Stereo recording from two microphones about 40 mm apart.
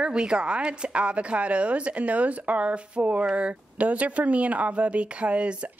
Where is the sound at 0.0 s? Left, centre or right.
Right.